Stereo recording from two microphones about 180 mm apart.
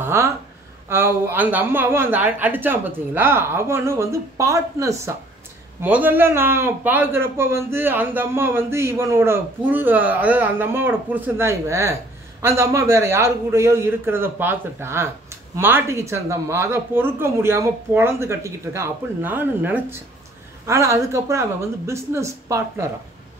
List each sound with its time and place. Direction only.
0.0 s a woman's voice: 15° right (ahead or behind)